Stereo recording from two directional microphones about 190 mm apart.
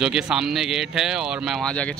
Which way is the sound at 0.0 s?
5° right (ahead or behind).